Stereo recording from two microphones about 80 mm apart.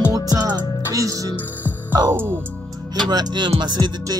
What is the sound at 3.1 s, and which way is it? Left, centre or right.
Music, right.